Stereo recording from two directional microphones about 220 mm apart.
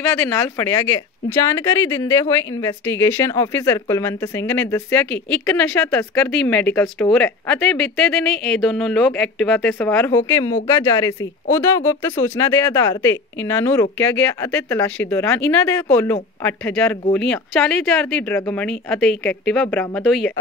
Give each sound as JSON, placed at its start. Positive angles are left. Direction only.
{"t": 0.0, "sound": "speech", "side_deg": 10}